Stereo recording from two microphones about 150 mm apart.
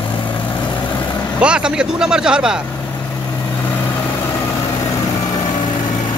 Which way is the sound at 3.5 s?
15° left (ahead or behind).